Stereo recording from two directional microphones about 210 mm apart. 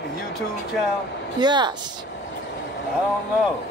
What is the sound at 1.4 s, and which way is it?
Speech, 20° right (ahead or behind).